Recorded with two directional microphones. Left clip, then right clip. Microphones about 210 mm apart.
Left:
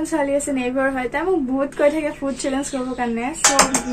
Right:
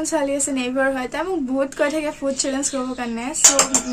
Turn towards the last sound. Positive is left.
turn(degrees=-15)  # may be behind; listen again after turning